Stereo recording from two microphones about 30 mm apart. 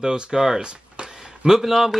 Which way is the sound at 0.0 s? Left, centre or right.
Right.